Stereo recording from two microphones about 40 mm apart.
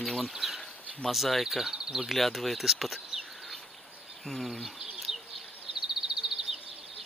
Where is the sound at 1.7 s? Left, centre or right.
Centre.